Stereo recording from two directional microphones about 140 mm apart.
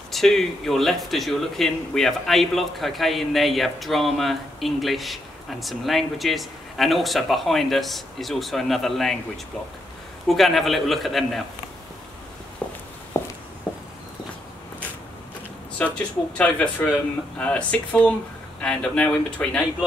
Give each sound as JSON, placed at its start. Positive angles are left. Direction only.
{"t": 0.1, "sound": "speech", "side_deg": 0}
{"t": 10.2, "sound": "speech", "side_deg": 0}
{"t": 13.1, "sound": "a sound", "side_deg": 20}
{"t": 13.7, "sound": "walk", "side_deg": -5}
{"t": 15.8, "sound": "speech", "side_deg": 10}